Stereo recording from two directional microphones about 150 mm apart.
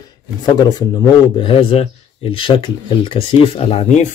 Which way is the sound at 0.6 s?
30° left (ahead or behind).